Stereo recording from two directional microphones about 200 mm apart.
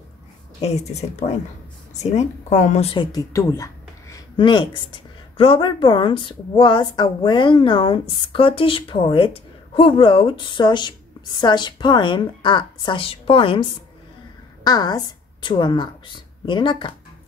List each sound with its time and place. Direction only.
0.6 s a woman's voice: 35° left (ahead or behind)